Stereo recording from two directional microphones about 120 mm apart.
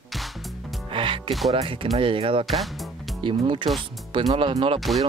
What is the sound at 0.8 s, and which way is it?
Music, 45° right (ahead or behind).